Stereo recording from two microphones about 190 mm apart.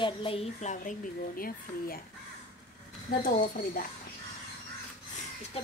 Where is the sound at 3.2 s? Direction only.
45° left (ahead or behind).